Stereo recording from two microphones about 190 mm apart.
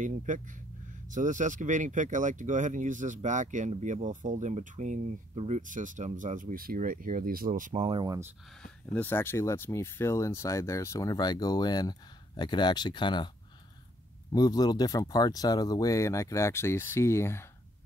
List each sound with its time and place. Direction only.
0.0 s speech: 40° right (ahead or behind); by 8.2 s 25° right (ahead or behind)
8.9 s speech: 10° left (ahead or behind)
14.3 s speech: 20° left (ahead or behind)